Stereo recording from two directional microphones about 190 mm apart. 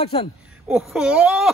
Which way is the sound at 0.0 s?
30° left (ahead or behind).